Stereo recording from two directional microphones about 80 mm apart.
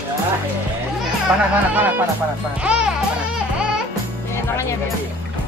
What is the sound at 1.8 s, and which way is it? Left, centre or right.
Speech, right.